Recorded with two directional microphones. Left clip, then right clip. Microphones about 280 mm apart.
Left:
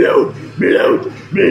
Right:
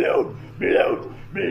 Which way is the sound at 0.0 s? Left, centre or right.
Centre.